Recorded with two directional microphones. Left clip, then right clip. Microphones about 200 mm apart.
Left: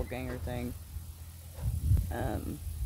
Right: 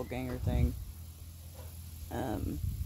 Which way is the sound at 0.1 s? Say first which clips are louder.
Even; 15° right (ahead or behind).